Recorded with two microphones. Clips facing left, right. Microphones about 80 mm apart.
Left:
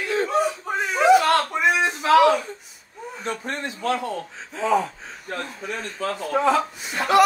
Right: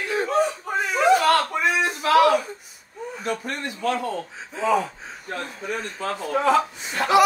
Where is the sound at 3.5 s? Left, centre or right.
Left.